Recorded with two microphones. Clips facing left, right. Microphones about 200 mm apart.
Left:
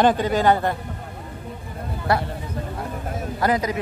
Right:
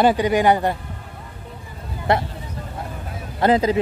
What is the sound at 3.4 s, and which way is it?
Speech, 25° right (ahead or behind).